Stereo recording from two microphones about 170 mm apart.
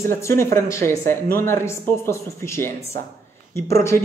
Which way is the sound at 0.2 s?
15° left (ahead or behind).